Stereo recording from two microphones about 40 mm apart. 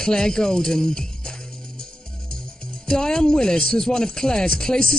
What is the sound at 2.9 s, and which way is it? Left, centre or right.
A woman's voice, centre.